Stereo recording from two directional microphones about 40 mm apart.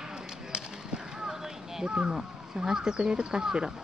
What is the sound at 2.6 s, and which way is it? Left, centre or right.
Speech, centre.